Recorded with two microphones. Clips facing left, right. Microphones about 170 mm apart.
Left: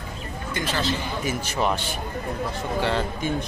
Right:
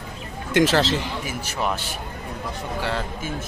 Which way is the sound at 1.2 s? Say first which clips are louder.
Left 3 dB; 10° right (ahead or behind).